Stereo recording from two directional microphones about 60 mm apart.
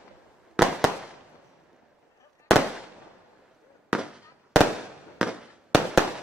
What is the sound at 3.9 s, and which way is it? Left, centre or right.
Fireworks, centre.